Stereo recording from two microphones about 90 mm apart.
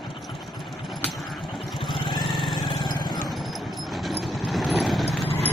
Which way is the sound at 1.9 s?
70° left (ahead or behind).